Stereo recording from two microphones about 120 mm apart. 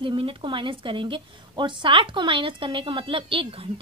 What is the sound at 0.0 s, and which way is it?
A woman's voice, 45° right (ahead or behind).